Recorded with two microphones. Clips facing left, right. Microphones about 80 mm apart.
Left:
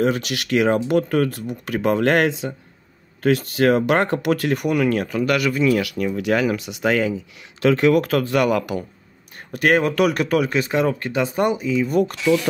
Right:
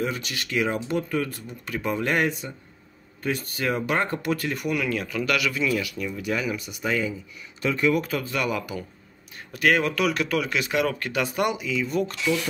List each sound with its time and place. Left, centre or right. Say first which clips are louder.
0.0 s speech: left 8 dB; left
5.8 s speech: left 7 dB; left
9.5 s speech: left 4 dB; left
11.9 s speech: left 7 dB; left